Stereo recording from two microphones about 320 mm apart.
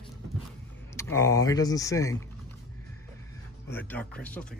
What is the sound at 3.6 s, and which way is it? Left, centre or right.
Speech, centre.